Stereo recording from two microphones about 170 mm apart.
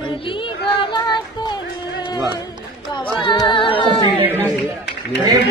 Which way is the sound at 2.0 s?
25° left (ahead or behind).